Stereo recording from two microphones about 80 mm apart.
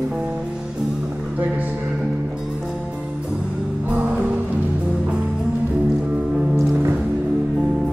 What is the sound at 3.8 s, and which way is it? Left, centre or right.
Music, centre.